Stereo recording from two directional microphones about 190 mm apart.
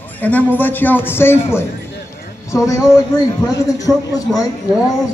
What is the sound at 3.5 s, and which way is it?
Speech, 15° left (ahead or behind).